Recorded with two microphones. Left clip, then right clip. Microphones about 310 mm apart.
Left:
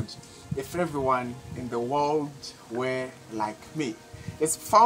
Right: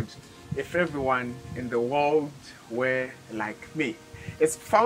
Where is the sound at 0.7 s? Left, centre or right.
Centre.